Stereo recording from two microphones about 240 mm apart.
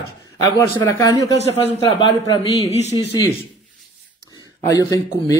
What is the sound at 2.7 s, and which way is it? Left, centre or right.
Speech, left.